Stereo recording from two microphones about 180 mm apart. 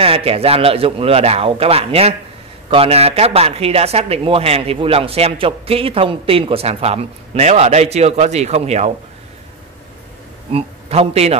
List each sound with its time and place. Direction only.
0.0 s speech: 30° right (ahead or behind)
10.5 s a man's voice: 35° right (ahead or behind)